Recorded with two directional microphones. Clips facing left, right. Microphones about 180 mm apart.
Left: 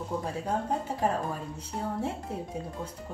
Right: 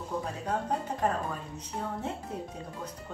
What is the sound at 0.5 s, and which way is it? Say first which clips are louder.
Speech: left 1 dB; 10° left (ahead or behind).